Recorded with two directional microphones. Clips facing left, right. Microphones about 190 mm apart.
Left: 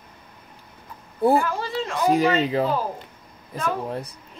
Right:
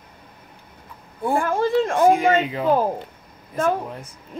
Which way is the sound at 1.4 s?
50° right (ahead or behind).